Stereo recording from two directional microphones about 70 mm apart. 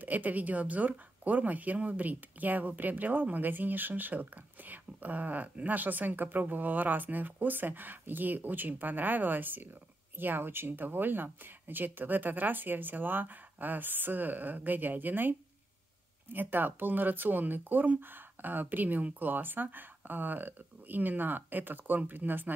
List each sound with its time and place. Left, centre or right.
0.0 s speech: right